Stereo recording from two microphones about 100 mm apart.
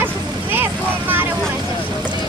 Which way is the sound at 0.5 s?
20° right (ahead or behind).